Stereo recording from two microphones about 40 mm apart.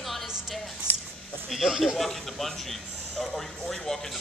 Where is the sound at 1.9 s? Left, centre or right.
Centre.